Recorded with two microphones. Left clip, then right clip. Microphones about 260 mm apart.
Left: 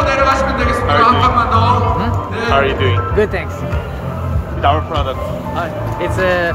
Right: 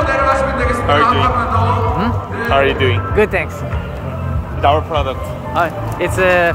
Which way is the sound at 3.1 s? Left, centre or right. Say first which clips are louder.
Right 3 dB; centre.